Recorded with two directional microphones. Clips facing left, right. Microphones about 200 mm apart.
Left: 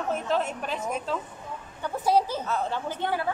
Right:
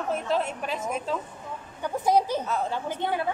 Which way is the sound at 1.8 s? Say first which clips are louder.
Right 1 dB; 15° right (ahead or behind).